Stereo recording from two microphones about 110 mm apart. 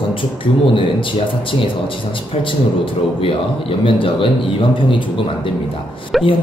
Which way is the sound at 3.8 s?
50° left (ahead or behind).